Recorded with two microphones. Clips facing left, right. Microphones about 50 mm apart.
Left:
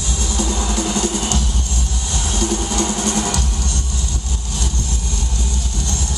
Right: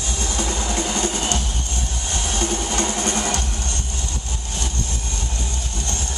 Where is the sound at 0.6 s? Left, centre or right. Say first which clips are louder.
Left 3 dB; right.